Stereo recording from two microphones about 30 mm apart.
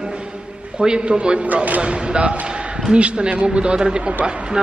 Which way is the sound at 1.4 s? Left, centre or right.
Right.